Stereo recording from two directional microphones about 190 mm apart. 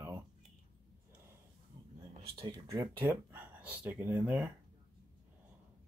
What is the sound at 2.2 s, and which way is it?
Speech, 30° right (ahead or behind).